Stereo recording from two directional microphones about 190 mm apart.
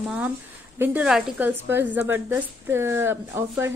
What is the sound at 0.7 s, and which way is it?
Speech, 5° right (ahead or behind).